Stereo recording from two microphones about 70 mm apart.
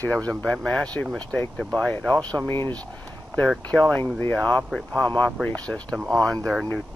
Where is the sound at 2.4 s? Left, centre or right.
Left.